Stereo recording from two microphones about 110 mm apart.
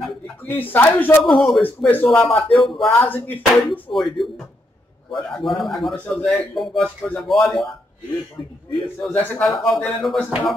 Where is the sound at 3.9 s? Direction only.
45° left (ahead or behind).